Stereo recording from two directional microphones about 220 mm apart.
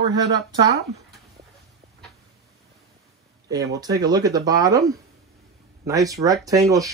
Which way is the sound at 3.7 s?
15° right (ahead or behind).